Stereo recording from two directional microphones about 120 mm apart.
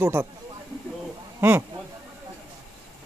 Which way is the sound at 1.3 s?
20° right (ahead or behind).